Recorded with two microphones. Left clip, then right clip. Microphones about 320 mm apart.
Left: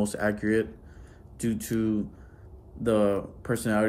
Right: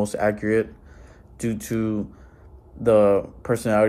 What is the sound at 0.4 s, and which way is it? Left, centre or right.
Speech, centre.